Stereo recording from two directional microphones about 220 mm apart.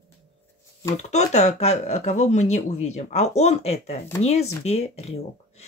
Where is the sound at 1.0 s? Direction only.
30° left (ahead or behind).